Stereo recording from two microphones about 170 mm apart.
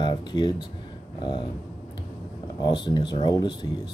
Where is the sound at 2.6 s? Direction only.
25° left (ahead or behind).